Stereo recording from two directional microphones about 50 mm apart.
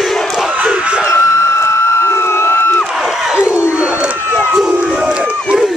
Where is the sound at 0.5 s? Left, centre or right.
Right.